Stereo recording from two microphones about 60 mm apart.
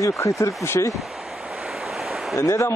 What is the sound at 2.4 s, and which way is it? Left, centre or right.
Speech, left.